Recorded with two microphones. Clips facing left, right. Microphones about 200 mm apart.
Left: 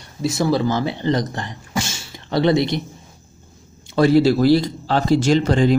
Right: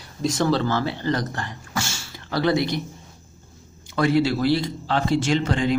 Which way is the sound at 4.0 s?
35° left (ahead or behind).